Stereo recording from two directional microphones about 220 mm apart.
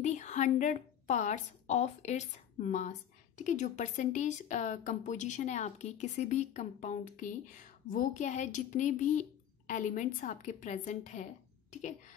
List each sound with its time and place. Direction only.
0.0 s a woman's voice: 35° left (ahead or behind)